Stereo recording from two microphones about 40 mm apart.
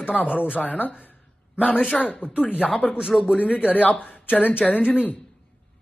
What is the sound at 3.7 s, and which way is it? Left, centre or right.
Speech, left.